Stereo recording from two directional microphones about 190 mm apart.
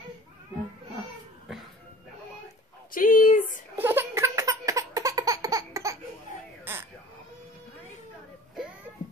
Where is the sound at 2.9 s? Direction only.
45° left (ahead or behind).